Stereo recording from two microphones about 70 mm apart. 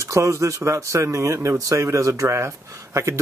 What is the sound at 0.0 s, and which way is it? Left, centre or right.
Speech, right.